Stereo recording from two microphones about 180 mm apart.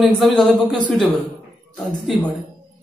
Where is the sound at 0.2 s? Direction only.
Centre (ahead or behind).